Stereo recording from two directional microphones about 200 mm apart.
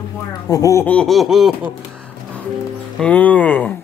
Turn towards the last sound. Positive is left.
turn(degrees=5)  # may be behind; listen again after turning